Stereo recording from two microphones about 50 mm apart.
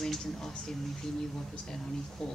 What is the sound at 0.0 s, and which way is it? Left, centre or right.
Speech, centre.